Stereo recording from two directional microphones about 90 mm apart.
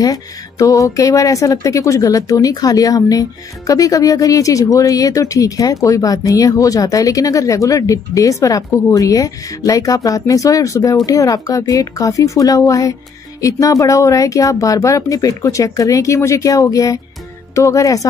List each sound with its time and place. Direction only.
0.0 s speech: 40° left (ahead or behind)